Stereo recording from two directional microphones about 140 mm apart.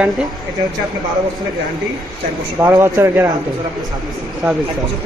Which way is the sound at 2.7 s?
15° right (ahead or behind).